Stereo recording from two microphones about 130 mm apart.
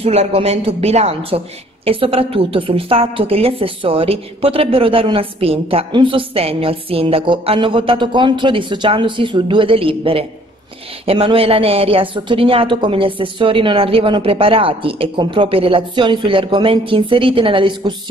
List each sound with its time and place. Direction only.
0.0 s a woman's voice: 50° right (ahead or behind)